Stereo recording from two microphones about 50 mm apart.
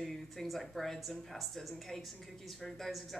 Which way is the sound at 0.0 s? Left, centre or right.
Centre.